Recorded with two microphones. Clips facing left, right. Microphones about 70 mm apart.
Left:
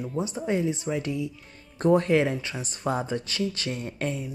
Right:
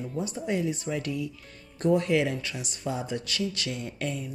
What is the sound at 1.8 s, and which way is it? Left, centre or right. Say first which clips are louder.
Speech: left 3 dB; left.